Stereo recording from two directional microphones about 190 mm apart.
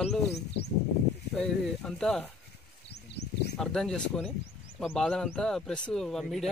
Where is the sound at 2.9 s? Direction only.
60° left (ahead or behind).